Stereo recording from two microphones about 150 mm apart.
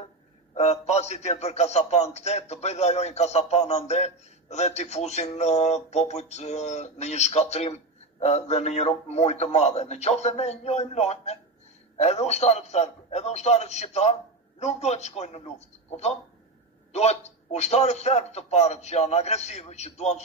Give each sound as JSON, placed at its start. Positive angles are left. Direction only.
{"t": 0.6, "sound": "a man's voice", "side_deg": 45}
{"t": 16.9, "sound": "a man's voice", "side_deg": 45}